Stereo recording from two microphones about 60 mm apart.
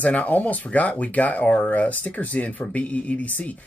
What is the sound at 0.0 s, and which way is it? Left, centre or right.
Speech, left.